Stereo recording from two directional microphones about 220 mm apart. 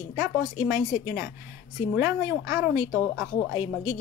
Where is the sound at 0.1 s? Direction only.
55° left (ahead or behind).